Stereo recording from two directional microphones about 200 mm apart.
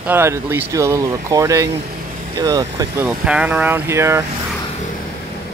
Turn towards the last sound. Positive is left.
turn(degrees=-15)  # may be behind; listen again after turning